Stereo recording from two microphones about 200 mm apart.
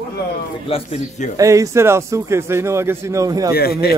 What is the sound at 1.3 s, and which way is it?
A man's voice, 15° right (ahead or behind).